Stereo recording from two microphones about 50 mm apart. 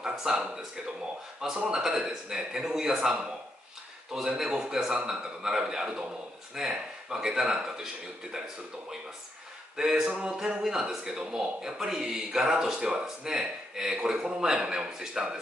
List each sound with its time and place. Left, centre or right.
0.0 s speech: centre
1.7 s speech: centre
4.4 s speech: centre
9.8 s speech: centre
10.0 s a sound: right
10.6 s speech: centre